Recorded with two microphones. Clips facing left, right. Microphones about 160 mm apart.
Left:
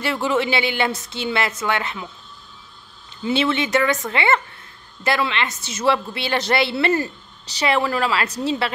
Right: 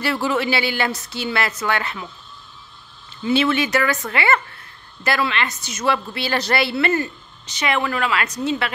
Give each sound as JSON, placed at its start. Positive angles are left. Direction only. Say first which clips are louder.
{"t": 0.0, "sound": "a woman's voice", "louder": "even", "side_deg": 20}
{"t": 3.3, "sound": "a woman's voice", "louder": "right 2 dB", "side_deg": 25}